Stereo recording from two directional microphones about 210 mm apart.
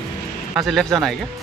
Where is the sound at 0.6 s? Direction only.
Centre (ahead or behind).